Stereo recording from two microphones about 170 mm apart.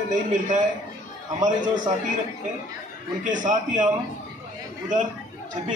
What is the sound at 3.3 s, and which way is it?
Speech, 50° right (ahead or behind).